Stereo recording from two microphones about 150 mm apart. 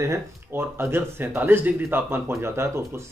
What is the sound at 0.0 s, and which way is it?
Speech, 15° right (ahead or behind).